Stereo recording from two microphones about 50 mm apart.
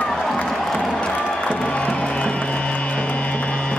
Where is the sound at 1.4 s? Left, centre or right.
Left.